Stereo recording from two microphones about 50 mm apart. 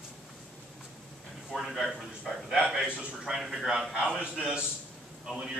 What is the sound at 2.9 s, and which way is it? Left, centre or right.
Speech, centre.